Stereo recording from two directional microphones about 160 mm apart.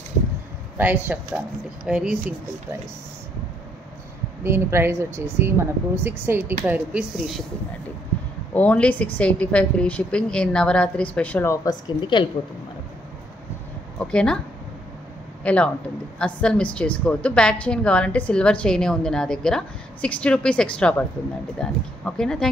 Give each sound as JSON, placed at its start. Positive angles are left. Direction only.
{"t": 0.7, "sound": "speech", "side_deg": -10}
{"t": 4.4, "sound": "speech", "side_deg": -15}
{"t": 8.5, "sound": "a woman's voice", "side_deg": 10}
{"t": 12.0, "sound": "a woman's voice", "side_deg": 30}
{"t": 13.9, "sound": "speech", "side_deg": 5}
{"t": 15.4, "sound": "a man's voice", "side_deg": 10}